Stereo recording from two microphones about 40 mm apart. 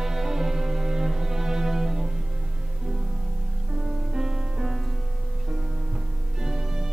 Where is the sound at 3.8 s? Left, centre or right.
Centre.